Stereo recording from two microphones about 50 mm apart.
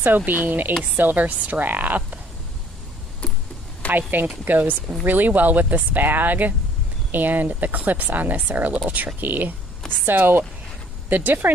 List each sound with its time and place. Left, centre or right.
0.0 s speech: right
3.2 s tick-tock: left
4.1 s speech: right